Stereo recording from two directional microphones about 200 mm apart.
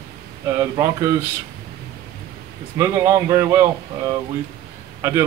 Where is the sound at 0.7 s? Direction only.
15° right (ahead or behind).